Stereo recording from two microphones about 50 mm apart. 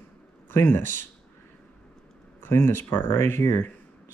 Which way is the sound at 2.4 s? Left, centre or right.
Left.